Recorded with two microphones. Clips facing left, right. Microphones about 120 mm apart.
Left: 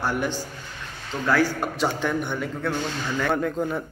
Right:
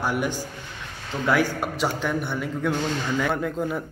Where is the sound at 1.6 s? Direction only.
5° right (ahead or behind).